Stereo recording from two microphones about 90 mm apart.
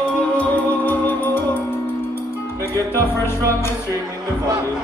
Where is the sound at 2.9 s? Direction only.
30° left (ahead or behind).